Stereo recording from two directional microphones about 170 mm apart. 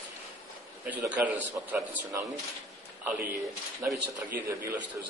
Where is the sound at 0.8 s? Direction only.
10° right (ahead or behind).